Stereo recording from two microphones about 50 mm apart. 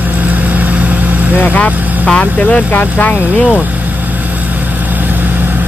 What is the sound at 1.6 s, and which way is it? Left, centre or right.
Speech, centre.